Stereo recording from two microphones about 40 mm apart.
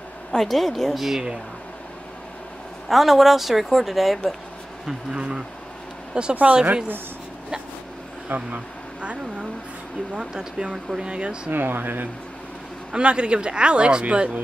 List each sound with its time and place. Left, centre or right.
0.3 s a woman's voice: centre
2.9 s a woman's voice: centre
5.1 s speech: right
6.5 s a woman's voice: right
8.3 s speech: right
9.0 s vehicle: right
10.1 s speech: right
10.7 s speech: centre
11.1 s speech: right
11.5 s speech: right
12.9 s speech: right